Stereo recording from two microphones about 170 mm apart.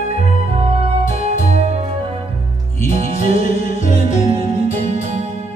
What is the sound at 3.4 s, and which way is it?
Music, 50° left (ahead or behind).